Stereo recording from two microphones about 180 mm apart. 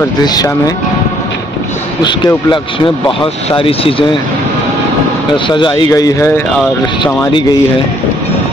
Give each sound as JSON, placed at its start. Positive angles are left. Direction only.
{"t": 0.2, "sound": "speech", "side_deg": 20}
{"t": 2.0, "sound": "speech", "side_deg": 25}
{"t": 5.5, "sound": "speech", "side_deg": 25}